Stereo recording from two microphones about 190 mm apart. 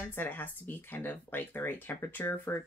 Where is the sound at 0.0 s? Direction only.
10° left (ahead or behind).